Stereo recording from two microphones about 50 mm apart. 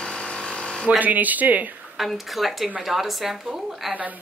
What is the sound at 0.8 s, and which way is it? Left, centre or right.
Speech, right.